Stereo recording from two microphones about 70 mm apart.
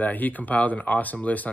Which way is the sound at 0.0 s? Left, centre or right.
Left.